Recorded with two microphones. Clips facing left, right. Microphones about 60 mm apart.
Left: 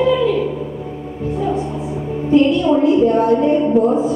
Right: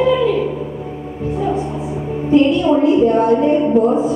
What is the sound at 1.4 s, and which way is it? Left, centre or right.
A woman's voice, right.